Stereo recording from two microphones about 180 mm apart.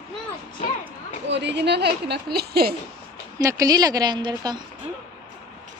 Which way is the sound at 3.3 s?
20° right (ahead or behind).